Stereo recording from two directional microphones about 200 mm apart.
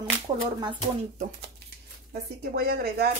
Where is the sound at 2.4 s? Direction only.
55° right (ahead or behind).